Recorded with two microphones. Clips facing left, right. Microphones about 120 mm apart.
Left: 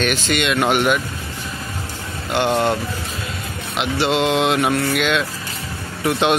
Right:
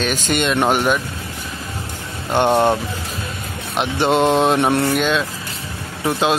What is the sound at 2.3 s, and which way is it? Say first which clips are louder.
Mantra: right 3 dB; 50° right (ahead or behind).